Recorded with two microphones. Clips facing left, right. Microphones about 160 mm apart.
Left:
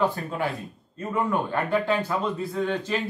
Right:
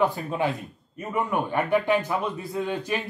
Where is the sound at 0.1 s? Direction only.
20° right (ahead or behind).